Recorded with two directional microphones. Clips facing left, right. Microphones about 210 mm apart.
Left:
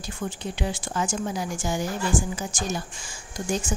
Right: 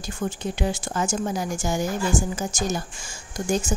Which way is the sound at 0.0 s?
45° right (ahead or behind).